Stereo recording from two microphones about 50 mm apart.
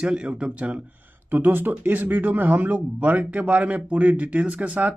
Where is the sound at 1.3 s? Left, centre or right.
Right.